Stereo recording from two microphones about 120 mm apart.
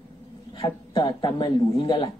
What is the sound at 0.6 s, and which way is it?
Speech, 40° left (ahead or behind).